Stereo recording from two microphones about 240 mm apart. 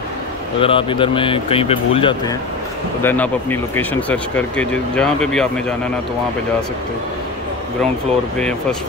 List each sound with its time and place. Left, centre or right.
0.6 s speech: left
3.0 s speech: centre